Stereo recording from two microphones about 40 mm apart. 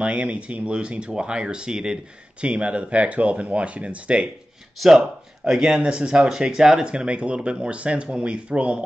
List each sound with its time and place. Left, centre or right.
0.0 s speech: right; by 2.0 s centre
2.4 s speech: right
4.7 s speech: centre
6.9 s speech: right